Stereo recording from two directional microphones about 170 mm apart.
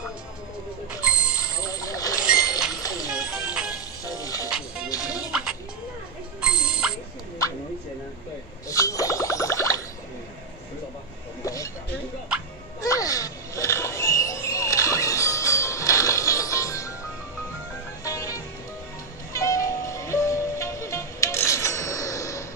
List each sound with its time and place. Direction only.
1.6 s vehicle: 20° left (ahead or behind)
2.7 s music: 20° left (ahead or behind)
3.3 s music: 5° right (ahead or behind)
4.0 s music: 20° left (ahead or behind)
5.3 s music: 5° right (ahead or behind)
8.6 s a sound: 20° left (ahead or behind)
11.4 s a sound: 20° left (ahead or behind)
12.8 s music: 20° left (ahead or behind)
18.0 s music: 20° left (ahead or behind)